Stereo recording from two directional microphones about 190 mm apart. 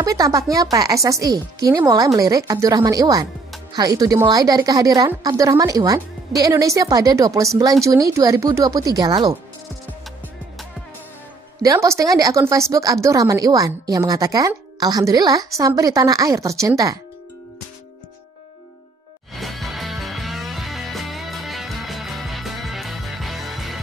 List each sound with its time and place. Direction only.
0.0 s a woman's voice: 20° right (ahead or behind)
11.6 s speech: 15° right (ahead or behind)
19.3 s music: centre (ahead or behind)